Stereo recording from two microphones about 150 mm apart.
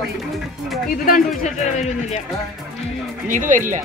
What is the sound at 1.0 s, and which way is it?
Speech, 60° left (ahead or behind).